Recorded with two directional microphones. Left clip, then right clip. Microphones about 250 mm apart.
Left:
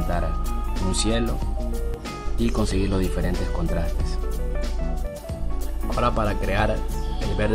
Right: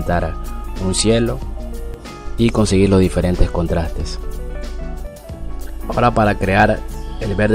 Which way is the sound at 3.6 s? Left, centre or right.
Right.